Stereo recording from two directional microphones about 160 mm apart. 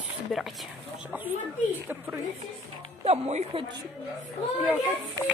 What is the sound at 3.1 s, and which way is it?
Speech, 40° right (ahead or behind).